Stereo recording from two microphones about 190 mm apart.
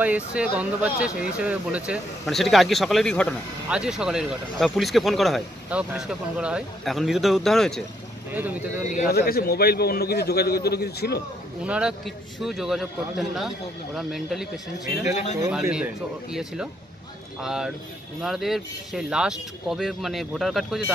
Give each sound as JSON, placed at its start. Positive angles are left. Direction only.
{"t": 0.0, "sound": "speech", "side_deg": -5}
{"t": 8.4, "sound": "speech", "side_deg": -10}
{"t": 8.8, "sound": "a man's voice", "side_deg": 45}
{"t": 11.6, "sound": "speech", "side_deg": -5}
{"t": 15.0, "sound": "speech", "side_deg": 35}
{"t": 15.6, "sound": "speech", "side_deg": -5}
{"t": 17.4, "sound": "speech", "side_deg": -5}